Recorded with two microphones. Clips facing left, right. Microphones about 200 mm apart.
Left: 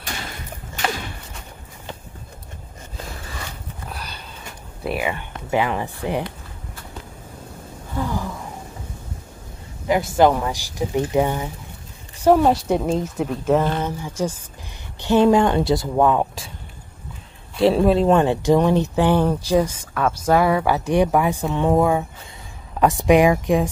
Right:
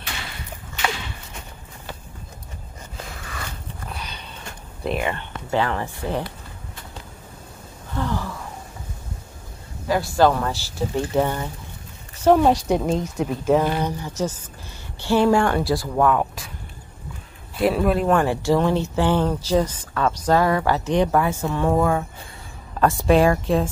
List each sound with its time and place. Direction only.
3.9 s sniff: centre (ahead or behind)
4.8 s speech: 5° left (ahead or behind)
7.9 s gasp: 10° left (ahead or behind)
9.8 s a woman's voice: 20° left (ahead or behind)
17.6 s speech: 25° left (ahead or behind)